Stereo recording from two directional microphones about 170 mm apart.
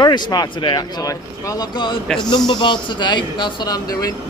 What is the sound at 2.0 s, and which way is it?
Speech, 5° left (ahead or behind).